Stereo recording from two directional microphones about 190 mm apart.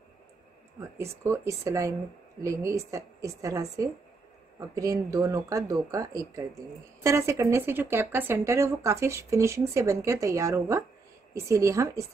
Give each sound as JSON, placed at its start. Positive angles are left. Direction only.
{"t": 0.7, "sound": "speech", "side_deg": -15}